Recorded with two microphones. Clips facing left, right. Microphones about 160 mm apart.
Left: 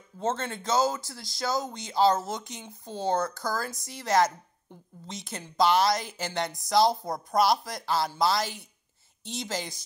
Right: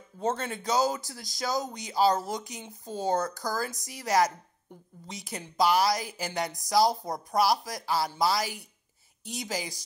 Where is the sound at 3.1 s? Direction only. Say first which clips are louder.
Left 1 dB; 40° right (ahead or behind).